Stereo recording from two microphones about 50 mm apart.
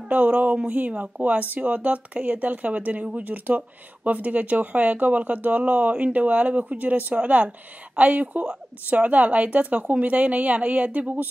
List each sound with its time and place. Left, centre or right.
0.1 s speech: right